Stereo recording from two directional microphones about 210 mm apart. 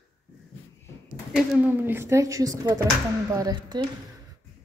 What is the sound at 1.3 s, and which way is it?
A woman's voice, 5° right (ahead or behind).